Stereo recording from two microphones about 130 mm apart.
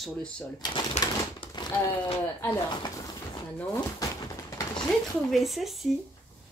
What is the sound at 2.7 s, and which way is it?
Speech, 35° left (ahead or behind).